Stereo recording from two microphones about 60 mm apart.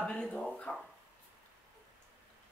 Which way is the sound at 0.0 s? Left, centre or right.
Centre.